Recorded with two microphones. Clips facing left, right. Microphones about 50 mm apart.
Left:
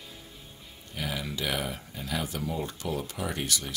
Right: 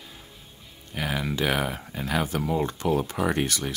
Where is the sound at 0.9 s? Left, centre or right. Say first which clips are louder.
Right 5 dB; right.